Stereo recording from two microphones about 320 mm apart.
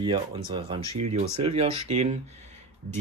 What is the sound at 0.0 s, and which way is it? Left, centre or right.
Speech, centre.